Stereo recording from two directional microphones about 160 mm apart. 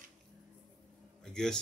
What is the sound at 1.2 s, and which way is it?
Speech, 5° left (ahead or behind).